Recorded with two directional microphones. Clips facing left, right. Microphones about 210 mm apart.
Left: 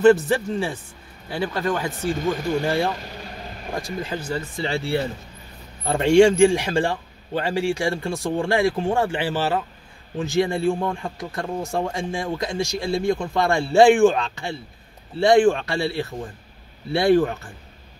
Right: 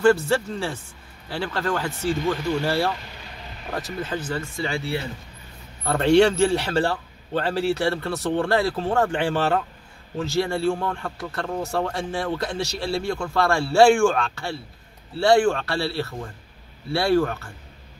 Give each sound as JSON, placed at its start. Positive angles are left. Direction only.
{"t": 0.0, "sound": "a man's voice", "side_deg": 20}
{"t": 4.6, "sound": "speech", "side_deg": 25}
{"t": 5.9, "sound": "a man's voice", "side_deg": 10}
{"t": 10.1, "sound": "a man's voice", "side_deg": 15}